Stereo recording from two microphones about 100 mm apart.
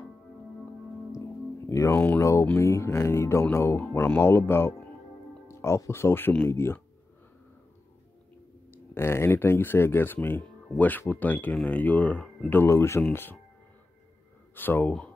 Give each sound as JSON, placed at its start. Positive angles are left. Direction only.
{"t": 1.7, "sound": "speech", "side_deg": 30}
{"t": 8.7, "sound": "speech", "side_deg": 25}
{"t": 14.5, "sound": "speech", "side_deg": 20}